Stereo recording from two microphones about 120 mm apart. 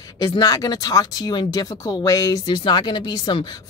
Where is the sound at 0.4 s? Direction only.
30° left (ahead or behind).